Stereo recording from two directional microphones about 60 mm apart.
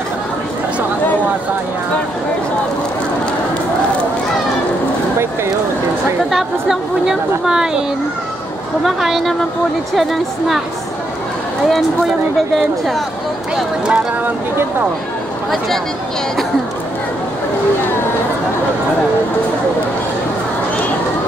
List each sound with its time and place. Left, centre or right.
6.3 s speech: centre
8.8 s speech: centre
11.7 s speech: centre